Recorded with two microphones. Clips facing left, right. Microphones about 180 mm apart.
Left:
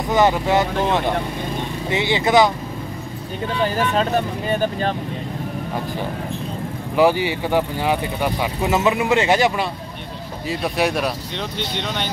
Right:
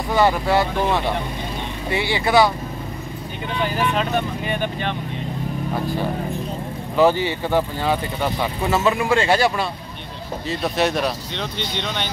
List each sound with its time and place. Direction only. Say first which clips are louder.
0.1 s speech: left 1 dB; 20° left (ahead or behind)
3.6 s speech: left 2 dB; 40° left (ahead or behind)
7.0 s speech: even; 10° left (ahead or behind)
10.5 s speech: even; 5° left (ahead or behind)